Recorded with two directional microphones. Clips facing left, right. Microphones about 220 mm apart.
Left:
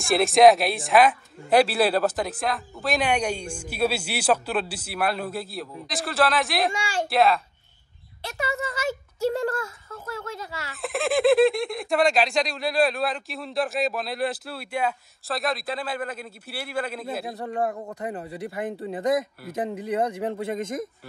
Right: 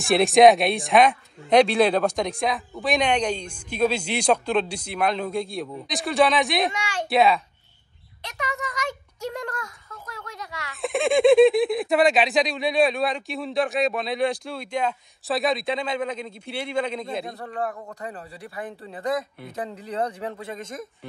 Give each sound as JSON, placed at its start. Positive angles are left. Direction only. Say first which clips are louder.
{"t": 0.0, "sound": "speech", "louder": "right 1 dB", "side_deg": 0}
{"t": 8.4, "sound": "a man's voice", "louder": "left 2 dB", "side_deg": 30}
{"t": 10.8, "sound": "speech", "louder": "right 3 dB", "side_deg": 0}
{"t": 17.4, "sound": "a man's voice", "louder": "left 3 dB", "side_deg": 25}